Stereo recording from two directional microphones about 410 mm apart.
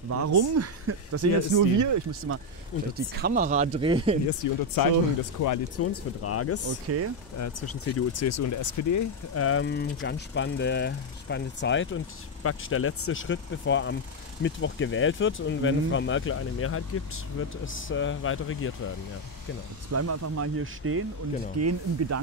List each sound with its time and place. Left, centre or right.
0.1 s speech: right
2.3 s speech: right
3.2 s speech: right
4.4 s speech: left
5.8 s speech: left
6.9 s speech: right
7.3 s speech: left
19.9 s speech: right